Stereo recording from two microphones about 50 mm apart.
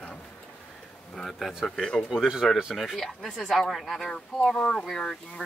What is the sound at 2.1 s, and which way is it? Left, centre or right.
Speech, centre.